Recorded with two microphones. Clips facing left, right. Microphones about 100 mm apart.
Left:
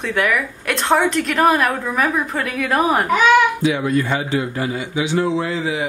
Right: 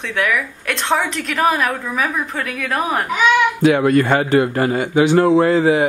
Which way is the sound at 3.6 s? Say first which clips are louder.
Right 5 dB; 60° right (ahead or behind).